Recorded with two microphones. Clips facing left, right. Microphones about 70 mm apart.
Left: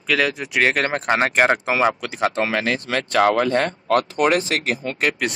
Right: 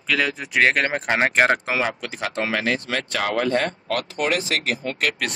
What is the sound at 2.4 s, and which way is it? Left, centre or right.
Speech, left.